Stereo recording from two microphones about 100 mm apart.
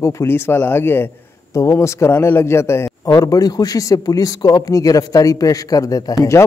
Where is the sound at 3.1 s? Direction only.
40° left (ahead or behind).